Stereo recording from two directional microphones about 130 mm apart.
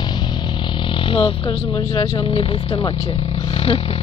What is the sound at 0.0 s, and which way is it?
Vehicle, 35° left (ahead or behind).